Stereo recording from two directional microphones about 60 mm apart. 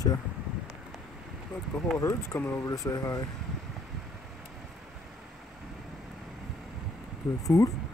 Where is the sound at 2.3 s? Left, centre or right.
Left.